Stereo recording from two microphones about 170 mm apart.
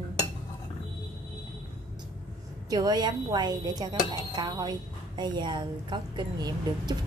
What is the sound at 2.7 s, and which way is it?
A woman's voice, 25° right (ahead or behind).